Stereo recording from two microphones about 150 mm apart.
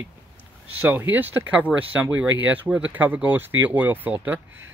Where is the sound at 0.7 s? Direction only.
10° right (ahead or behind).